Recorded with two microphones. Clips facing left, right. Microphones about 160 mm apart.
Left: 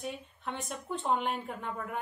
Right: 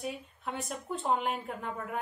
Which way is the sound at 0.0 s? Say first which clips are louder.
Right 1 dB; 5° right (ahead or behind).